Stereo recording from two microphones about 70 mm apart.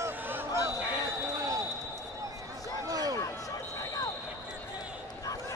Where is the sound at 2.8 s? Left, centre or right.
Right.